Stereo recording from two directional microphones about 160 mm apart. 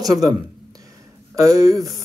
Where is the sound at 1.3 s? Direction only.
20° right (ahead or behind).